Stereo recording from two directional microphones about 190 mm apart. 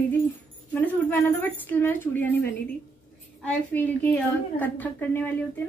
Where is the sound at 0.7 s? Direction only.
10° left (ahead or behind).